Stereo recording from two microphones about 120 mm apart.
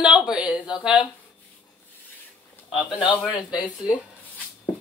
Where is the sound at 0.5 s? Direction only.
40° left (ahead or behind).